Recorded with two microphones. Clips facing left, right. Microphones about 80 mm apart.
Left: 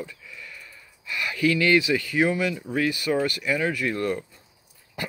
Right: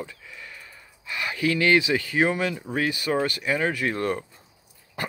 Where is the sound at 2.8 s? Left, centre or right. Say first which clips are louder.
Left 1 dB; right.